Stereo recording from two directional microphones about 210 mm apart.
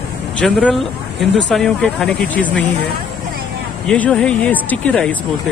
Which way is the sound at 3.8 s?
5° left (ahead or behind).